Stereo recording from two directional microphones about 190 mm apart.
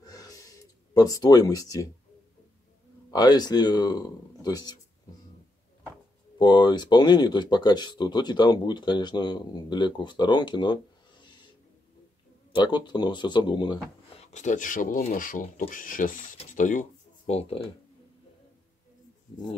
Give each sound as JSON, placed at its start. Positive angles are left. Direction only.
{"t": 0.0, "sound": "sigh", "side_deg": 20}
{"t": 0.9, "sound": "speech", "side_deg": 20}
{"t": 3.1, "sound": "speech", "side_deg": 20}
{"t": 6.3, "sound": "speech", "side_deg": 25}
{"t": 12.5, "sound": "speech", "side_deg": 25}
{"t": 14.2, "sound": "speech", "side_deg": 40}